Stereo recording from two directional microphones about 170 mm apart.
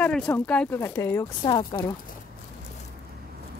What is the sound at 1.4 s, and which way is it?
Speech, 25° left (ahead or behind).